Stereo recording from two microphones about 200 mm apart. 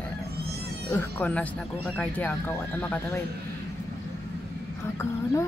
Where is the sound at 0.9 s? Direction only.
10° left (ahead or behind).